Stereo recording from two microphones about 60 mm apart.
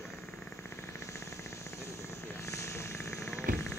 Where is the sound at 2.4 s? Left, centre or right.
Left.